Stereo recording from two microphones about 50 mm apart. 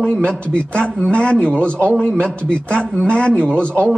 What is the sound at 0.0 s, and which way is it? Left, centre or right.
A man's voice, centre.